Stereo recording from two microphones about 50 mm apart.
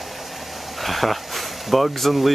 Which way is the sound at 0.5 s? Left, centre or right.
Centre.